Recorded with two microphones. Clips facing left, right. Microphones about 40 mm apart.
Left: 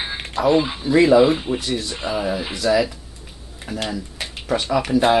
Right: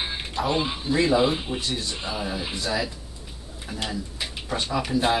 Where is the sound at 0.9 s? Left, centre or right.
Left.